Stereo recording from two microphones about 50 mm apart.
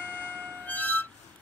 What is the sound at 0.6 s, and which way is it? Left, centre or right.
Music, left.